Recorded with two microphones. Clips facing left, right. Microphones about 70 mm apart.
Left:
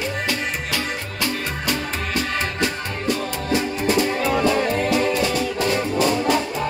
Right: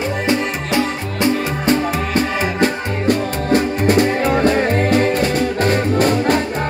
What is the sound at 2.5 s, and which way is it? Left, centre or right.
Music, right.